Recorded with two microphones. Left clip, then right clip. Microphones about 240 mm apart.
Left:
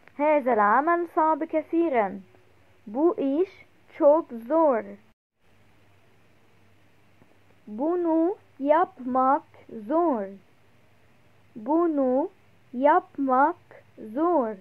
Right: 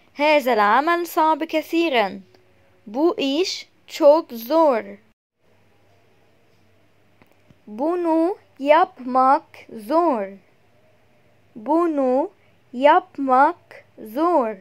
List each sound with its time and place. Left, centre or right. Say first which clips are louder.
0.1 s speech: right 5 dB; right
7.7 s speech: right 4 dB; right
11.6 s speech: right 4 dB; right